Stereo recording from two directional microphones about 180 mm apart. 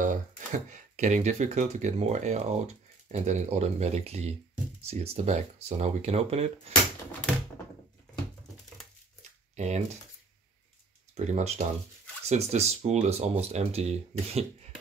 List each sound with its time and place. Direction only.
0.0 s speech: 45° right (ahead or behind)
9.6 s speech: 40° right (ahead or behind)
11.1 s speech: 40° right (ahead or behind)